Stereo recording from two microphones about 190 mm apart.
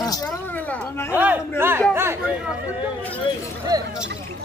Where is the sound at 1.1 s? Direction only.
10° right (ahead or behind).